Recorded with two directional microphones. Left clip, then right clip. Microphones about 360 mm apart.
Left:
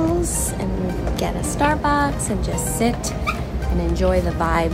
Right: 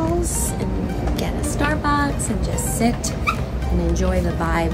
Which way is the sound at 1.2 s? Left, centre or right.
Centre.